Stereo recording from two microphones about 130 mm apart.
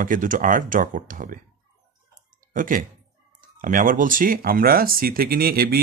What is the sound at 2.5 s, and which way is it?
Speech, 90° right.